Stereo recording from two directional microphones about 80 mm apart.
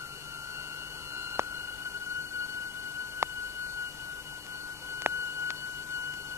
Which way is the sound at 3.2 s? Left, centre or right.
Right.